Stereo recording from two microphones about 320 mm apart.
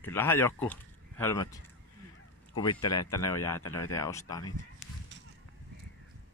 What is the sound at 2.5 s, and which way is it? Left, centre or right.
Speech, centre.